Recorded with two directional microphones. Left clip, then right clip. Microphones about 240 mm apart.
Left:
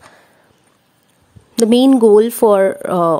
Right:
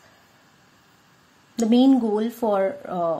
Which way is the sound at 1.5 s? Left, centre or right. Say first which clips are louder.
Left 8 dB; left.